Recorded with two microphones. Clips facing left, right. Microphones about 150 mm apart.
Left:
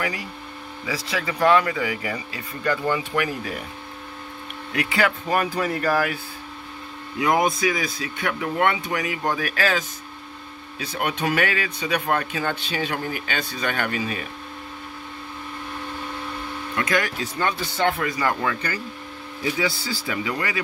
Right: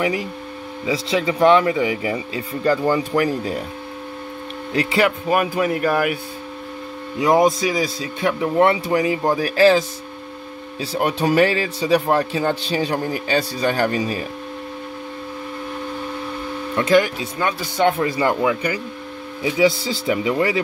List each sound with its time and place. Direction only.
0.8 s speech: 25° right (ahead or behind)
4.7 s speech: 25° right (ahead or behind)
5.3 s speech: 10° right (ahead or behind)
7.2 s speech: 30° right (ahead or behind)
16.7 s speech: 25° right (ahead or behind)
18.4 s speech: 15° right (ahead or behind)